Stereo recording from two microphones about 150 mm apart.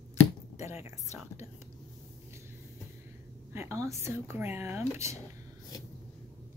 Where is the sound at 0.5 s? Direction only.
20° right (ahead or behind).